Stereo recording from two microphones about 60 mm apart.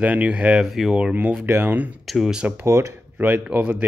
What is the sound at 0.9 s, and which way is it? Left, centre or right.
Speech, centre.